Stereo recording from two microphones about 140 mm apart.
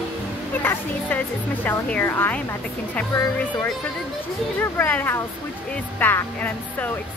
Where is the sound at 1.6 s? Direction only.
10° left (ahead or behind).